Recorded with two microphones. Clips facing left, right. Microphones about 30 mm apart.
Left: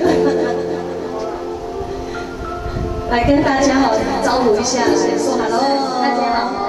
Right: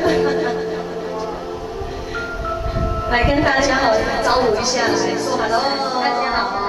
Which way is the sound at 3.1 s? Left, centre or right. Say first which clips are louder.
Left 2 dB; centre.